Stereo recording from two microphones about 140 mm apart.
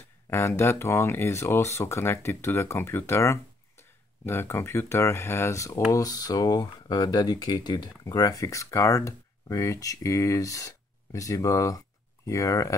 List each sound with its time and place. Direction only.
0.3 s speech: 20° left (ahead or behind)